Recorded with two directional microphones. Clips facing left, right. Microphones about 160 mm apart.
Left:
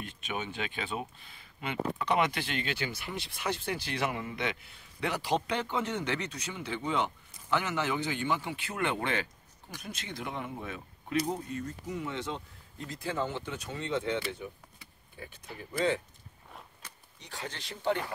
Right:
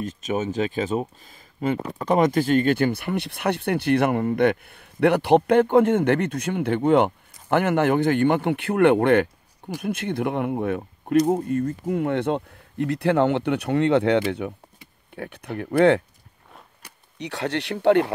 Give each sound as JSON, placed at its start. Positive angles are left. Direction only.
{"t": 0.0, "sound": "speech", "side_deg": -40}